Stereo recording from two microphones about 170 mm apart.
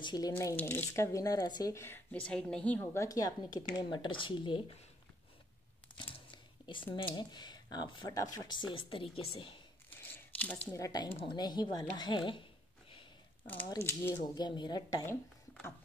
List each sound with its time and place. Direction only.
0.0 s speech: 25° left (ahead or behind)
0.3 s speech: 15° left (ahead or behind); by 4.6 s 30° left (ahead or behind)
5.9 s a sound: 30° left (ahead or behind)
7.2 s speech: 25° left (ahead or behind)
9.8 s crumpling: 10° left (ahead or behind)
10.8 s speech: 25° left (ahead or behind)
13.7 s speech: 15° left (ahead or behind)
14.2 s speech: 25° left (ahead or behind)
15.0 s speech: 15° left (ahead or behind)